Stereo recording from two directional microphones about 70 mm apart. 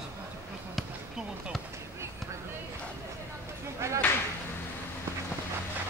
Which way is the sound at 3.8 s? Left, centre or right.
Right.